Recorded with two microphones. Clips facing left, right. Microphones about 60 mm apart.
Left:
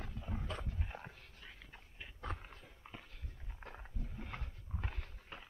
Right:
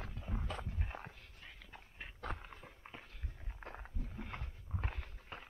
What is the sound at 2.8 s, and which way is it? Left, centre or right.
Clip-clop, right.